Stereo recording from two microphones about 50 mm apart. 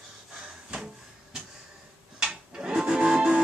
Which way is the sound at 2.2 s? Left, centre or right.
Centre.